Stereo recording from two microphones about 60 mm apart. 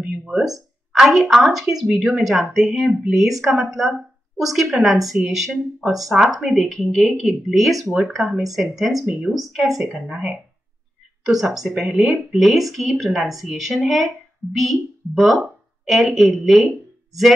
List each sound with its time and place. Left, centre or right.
0.0 s speech: centre
0.5 s a woman's voice: centre
7.8 s speech: right
8.2 s a woman's voice: centre
12.4 s a woman's voice: centre